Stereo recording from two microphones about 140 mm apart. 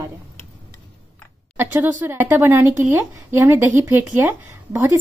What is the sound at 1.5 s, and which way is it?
Speech, 15° right (ahead or behind).